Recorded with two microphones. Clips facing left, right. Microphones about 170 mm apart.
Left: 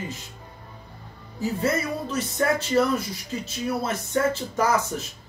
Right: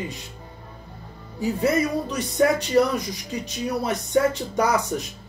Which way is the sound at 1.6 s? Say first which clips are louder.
Right 5 dB; 15° right (ahead or behind).